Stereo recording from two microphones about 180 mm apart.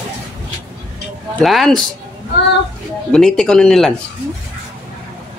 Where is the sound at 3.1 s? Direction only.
5° left (ahead or behind).